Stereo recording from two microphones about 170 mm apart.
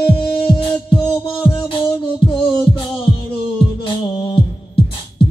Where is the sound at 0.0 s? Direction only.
30° left (ahead or behind).